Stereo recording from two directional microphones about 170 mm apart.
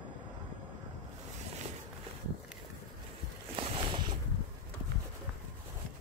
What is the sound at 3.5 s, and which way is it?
Boat, 35° right (ahead or behind).